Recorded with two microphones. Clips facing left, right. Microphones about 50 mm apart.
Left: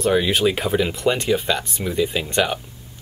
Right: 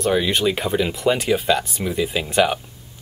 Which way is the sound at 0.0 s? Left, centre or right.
Centre.